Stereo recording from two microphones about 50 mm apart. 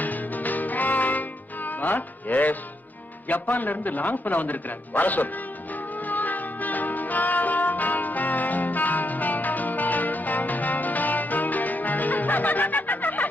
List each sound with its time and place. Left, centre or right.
0.0 s music: left
3.3 s speech: left
6.0 s music: left